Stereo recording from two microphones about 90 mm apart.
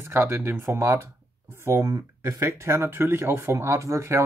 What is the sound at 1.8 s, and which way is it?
Speech, 40° right (ahead or behind).